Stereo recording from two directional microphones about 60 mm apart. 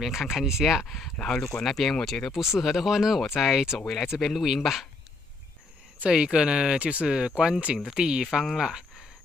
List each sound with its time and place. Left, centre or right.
0.0 s speech: centre
6.0 s speech: centre